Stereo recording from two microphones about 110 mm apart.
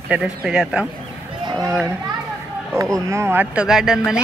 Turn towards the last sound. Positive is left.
turn(degrees=-5)  # may be behind; listen again after turning